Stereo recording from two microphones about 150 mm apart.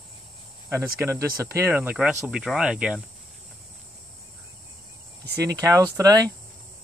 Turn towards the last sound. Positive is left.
turn(degrees=-25)  # may be behind; listen again after turning